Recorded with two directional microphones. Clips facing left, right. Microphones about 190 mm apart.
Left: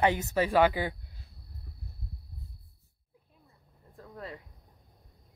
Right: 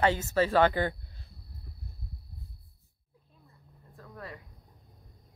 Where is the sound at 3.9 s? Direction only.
25° left (ahead or behind).